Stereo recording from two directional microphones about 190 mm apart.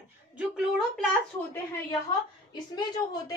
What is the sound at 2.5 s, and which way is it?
Speech, 20° left (ahead or behind).